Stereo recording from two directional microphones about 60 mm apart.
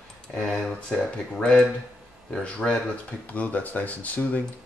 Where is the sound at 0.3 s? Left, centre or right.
Centre.